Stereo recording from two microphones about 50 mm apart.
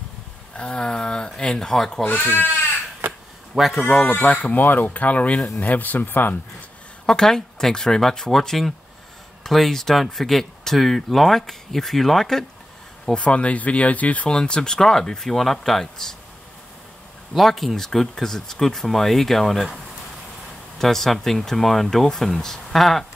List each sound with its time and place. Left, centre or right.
0.6 s speech: centre
2.0 s speech: left
3.5 s speech: centre
4.2 s speech: left
4.6 s speech: left
7.1 s speech: centre
13.1 s speech: left
14.3 s speech: centre
17.3 s speech: centre
20.8 s speech: centre